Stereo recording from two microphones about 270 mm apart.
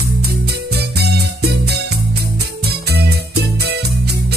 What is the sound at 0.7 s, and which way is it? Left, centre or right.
Music, right.